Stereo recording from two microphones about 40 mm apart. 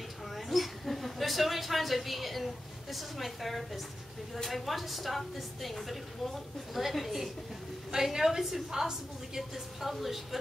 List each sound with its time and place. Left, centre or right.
0.2 s a woman's voice: centre